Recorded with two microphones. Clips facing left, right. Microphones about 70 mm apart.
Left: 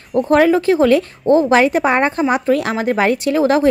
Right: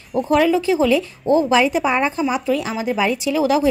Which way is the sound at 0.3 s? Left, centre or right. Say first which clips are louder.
Left 4 dB; left.